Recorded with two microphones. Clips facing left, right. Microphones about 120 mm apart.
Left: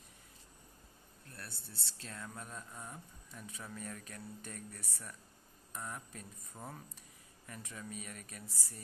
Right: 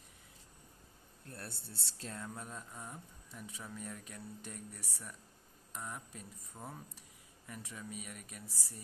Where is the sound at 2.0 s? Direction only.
20° right (ahead or behind).